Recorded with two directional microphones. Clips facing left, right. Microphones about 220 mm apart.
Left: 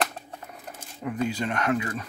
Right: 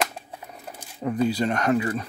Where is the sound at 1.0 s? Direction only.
35° right (ahead or behind).